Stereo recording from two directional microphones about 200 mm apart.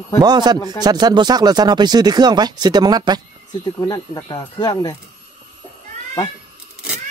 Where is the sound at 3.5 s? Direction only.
20° left (ahead or behind).